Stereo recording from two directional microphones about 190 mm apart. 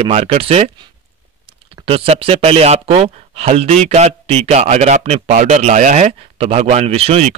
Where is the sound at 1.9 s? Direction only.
30° right (ahead or behind).